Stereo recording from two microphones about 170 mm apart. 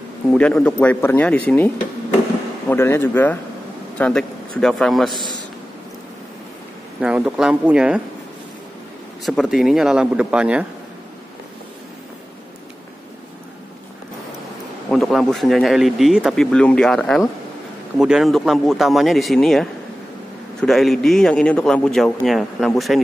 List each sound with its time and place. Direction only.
0.3 s speech: 5° left (ahead or behind)
2.7 s speech: 15° left (ahead or behind)
7.0 s speech: 5° right (ahead or behind)
9.2 s speech: centre (ahead or behind)
14.9 s speech: centre (ahead or behind)